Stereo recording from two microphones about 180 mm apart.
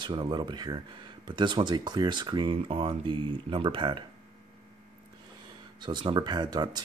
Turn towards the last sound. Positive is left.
turn(degrees=-25)  # may be behind; listen again after turning